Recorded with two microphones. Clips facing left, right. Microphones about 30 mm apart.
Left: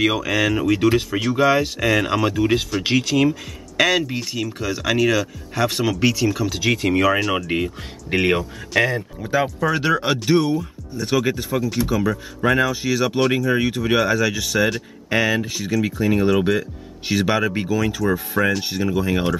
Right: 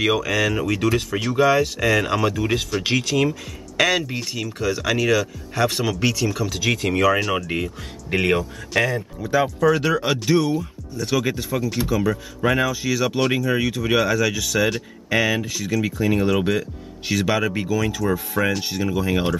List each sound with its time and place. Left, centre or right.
0.0 s speech: centre
7.5 s speech: centre
13.6 s speech: centre
17.1 s speech: centre